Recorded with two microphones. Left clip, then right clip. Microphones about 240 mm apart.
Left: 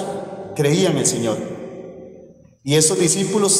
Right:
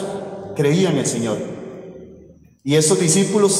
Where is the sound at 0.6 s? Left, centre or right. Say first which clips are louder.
Even; left.